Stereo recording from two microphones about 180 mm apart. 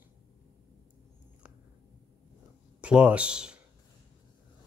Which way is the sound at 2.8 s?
5° right (ahead or behind).